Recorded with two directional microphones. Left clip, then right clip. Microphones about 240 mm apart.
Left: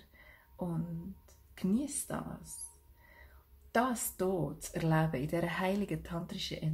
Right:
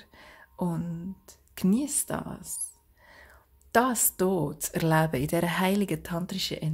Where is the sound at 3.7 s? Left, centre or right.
Right.